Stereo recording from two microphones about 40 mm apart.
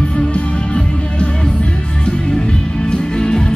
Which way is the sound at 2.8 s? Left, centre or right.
Left.